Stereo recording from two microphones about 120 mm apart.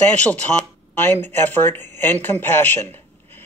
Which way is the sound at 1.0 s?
15° left (ahead or behind).